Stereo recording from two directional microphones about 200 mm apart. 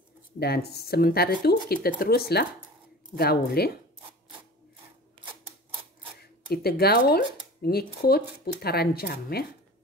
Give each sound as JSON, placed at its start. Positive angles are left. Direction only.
{"t": 0.4, "sound": "speech", "side_deg": 55}
{"t": 6.5, "sound": "speech", "side_deg": 50}